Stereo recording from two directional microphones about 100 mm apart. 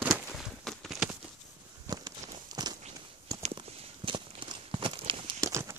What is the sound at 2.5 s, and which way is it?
Walk, 40° right (ahead or behind).